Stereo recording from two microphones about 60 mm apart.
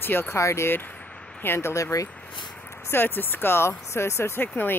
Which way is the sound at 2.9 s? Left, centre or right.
Left.